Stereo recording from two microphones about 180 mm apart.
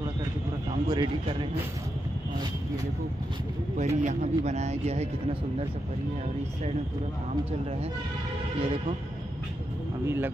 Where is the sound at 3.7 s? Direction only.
40° right (ahead or behind).